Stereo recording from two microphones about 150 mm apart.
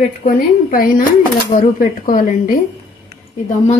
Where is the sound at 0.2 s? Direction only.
65° left (ahead or behind).